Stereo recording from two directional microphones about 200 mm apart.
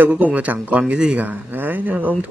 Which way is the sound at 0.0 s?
5° right (ahead or behind).